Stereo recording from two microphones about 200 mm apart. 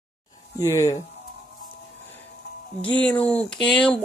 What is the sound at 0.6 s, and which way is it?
Speech, 15° left (ahead or behind).